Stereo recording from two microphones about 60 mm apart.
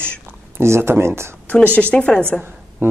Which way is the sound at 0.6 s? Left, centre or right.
Right.